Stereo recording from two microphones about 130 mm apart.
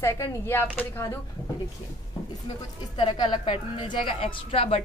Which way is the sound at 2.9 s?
40° left (ahead or behind).